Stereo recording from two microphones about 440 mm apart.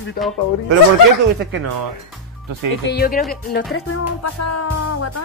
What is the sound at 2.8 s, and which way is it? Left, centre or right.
Speech, centre.